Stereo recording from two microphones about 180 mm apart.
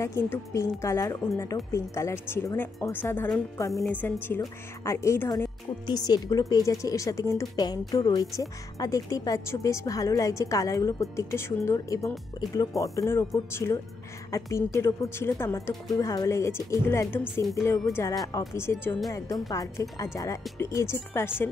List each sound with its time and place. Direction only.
0.0 s a woman's voice: 15° left (ahead or behind)